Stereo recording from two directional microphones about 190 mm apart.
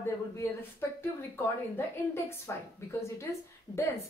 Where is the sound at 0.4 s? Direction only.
10° left (ahead or behind).